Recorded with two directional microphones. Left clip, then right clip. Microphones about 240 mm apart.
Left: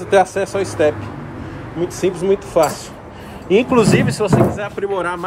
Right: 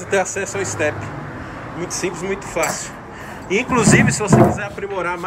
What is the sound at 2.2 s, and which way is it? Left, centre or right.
Speech, centre.